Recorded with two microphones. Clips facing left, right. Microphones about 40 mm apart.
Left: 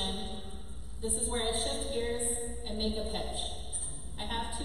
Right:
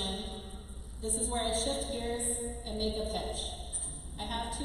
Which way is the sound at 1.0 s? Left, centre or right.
Centre.